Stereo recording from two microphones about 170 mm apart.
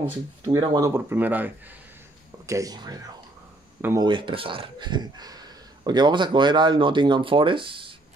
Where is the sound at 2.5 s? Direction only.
20° right (ahead or behind).